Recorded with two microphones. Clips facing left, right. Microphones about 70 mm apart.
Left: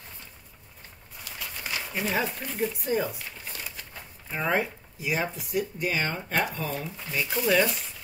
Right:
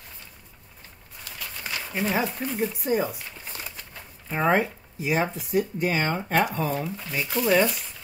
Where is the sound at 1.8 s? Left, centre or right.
Centre.